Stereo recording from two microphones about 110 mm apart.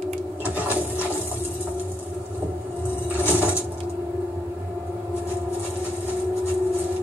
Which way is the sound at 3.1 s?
15° right (ahead or behind).